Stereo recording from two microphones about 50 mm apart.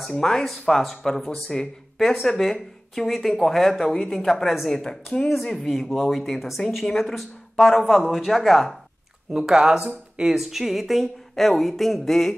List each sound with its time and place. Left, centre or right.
0.1 s speech: centre
9.5 s speech: centre